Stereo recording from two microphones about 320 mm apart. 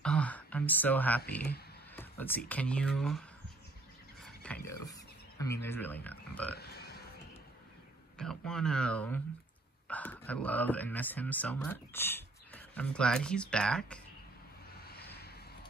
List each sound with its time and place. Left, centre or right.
0.0 s a sound: centre
2.0 s speech: centre
4.2 s a sound: centre
4.6 s mechanisms: centre
5.4 s speech: centre
6.5 s burping: left
8.2 s speech: centre
14.8 s vehicle: left